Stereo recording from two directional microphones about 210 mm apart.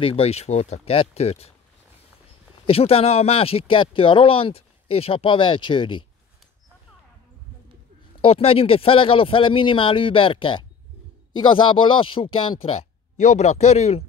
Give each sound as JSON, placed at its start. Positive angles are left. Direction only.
{"t": 0.0, "sound": "speech", "side_deg": 25}
{"t": 2.6, "sound": "speech", "side_deg": 25}
{"t": 8.2, "sound": "speech", "side_deg": 25}